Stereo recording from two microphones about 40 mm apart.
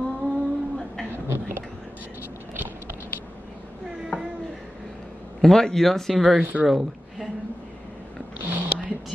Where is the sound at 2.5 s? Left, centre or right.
Right.